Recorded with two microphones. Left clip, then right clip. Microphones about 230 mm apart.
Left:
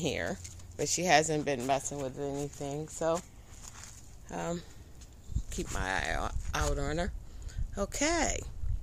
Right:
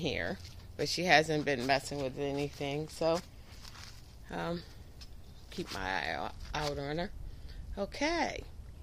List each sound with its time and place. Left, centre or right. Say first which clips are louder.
0.0 s speech: left 2 dB; left; by 3.2 s centre
4.3 s speech: left 1 dB; centre
5.8 s speech: left 2 dB; left